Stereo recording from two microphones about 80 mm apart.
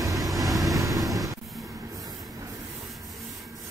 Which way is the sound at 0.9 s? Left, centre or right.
Centre.